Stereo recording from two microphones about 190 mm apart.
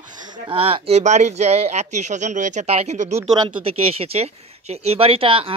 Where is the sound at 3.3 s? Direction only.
25° right (ahead or behind).